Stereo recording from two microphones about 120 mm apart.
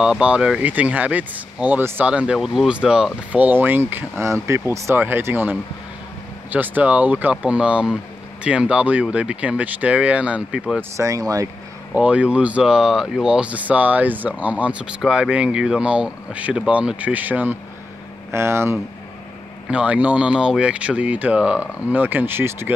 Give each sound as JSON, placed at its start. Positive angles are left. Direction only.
{"t": 0.0, "sound": "speech", "side_deg": -10}
{"t": 11.0, "sound": "speech", "side_deg": -30}
{"t": 11.9, "sound": "speech", "side_deg": -10}
{"t": 19.7, "sound": "speech", "side_deg": -10}